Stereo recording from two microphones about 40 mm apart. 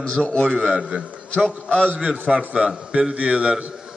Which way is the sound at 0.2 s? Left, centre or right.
Centre.